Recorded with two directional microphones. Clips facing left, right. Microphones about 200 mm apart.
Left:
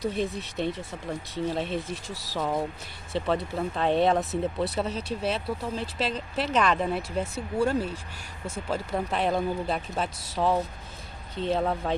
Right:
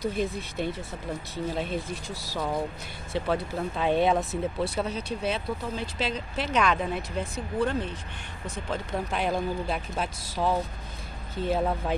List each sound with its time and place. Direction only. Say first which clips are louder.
0.0 s speech: even; centre (ahead or behind)